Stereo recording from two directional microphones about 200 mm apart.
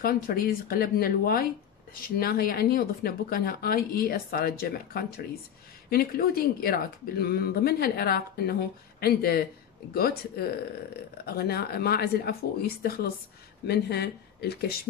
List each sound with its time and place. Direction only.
0.0 s speech: 50° left (ahead or behind)